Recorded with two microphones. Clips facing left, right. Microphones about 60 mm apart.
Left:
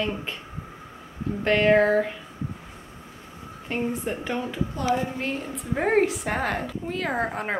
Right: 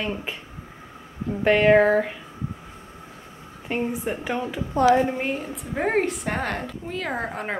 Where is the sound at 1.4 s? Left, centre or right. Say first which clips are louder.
Right 3 dB; centre.